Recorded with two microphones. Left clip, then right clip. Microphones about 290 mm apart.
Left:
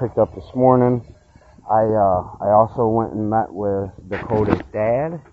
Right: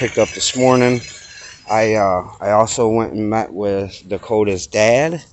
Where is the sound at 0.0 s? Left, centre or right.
Centre.